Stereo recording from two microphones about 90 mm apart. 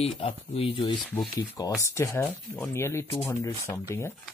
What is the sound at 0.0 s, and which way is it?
Speech, 90° left.